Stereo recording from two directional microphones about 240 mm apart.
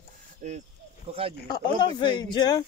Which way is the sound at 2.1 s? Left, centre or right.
Centre.